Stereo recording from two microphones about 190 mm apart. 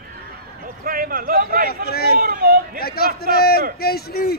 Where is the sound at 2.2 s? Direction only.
55° right (ahead or behind).